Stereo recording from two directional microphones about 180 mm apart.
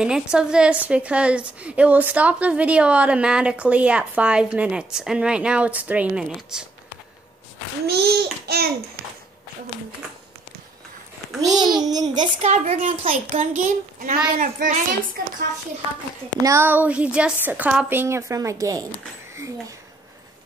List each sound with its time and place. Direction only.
0.0 s a woman's voice: 5° right (ahead or behind)
7.8 s babbling: 65° right (ahead or behind)
11.4 s a child's voice: 20° right (ahead or behind)
12.4 s a child's voice: 35° right (ahead or behind)
16.4 s a woman's voice: 15° right (ahead or behind)